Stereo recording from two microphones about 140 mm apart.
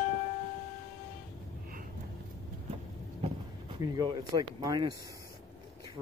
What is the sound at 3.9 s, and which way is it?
Speech, 30° right (ahead or behind).